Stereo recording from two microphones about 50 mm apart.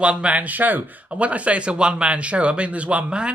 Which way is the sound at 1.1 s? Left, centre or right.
Right.